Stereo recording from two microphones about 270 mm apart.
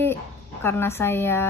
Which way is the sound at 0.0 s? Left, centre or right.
Centre.